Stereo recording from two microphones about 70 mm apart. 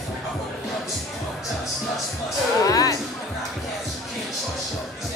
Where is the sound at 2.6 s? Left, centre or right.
Left.